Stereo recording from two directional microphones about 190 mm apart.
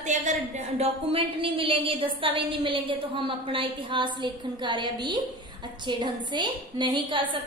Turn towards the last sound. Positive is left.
turn(degrees=-25)  # may be behind; listen again after turning